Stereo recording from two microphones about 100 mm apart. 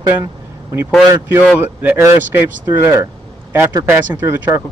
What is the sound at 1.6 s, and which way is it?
Speech, 20° right (ahead or behind).